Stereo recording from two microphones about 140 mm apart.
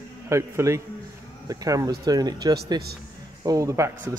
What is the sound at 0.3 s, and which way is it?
A man's voice, 20° right (ahead or behind).